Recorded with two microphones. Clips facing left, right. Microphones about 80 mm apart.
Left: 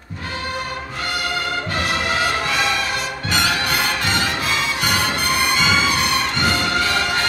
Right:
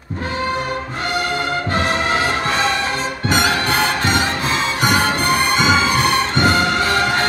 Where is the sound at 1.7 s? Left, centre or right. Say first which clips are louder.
Right 4 dB; right.